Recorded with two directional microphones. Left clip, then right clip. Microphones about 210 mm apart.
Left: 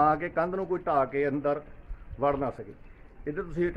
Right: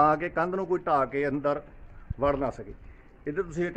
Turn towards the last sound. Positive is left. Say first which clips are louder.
# even
turn(degrees=-45)  # may be behind; listen again after turning